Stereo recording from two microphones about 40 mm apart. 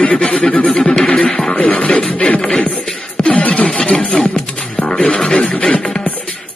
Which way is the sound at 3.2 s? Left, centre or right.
Left.